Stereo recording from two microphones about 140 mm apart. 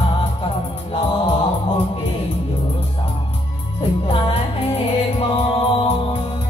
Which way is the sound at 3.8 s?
40° left (ahead or behind).